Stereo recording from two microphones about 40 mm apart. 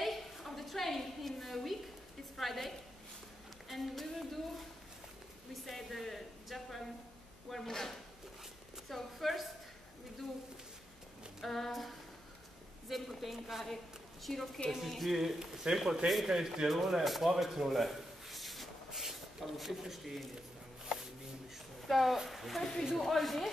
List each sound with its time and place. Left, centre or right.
0.0 s a sound: centre
2.3 s a woman's voice: centre
11.4 s a woman's voice: centre
17.3 s a sound: centre
21.9 s a woman's voice: centre
22.6 s speech: centre
22.9 s a woman's voice: centre